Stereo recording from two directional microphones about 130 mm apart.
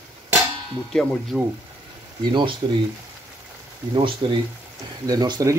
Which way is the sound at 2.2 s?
35° right (ahead or behind).